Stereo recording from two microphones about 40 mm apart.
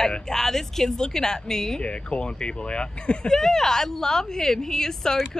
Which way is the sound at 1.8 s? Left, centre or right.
Left.